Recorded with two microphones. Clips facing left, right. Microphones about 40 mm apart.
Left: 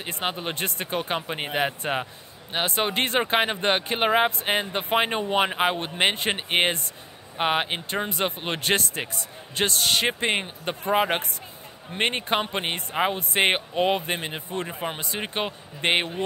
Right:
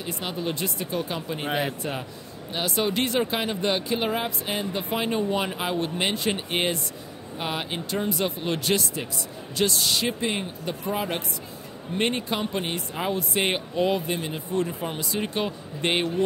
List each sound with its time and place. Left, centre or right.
0.0 s speech: left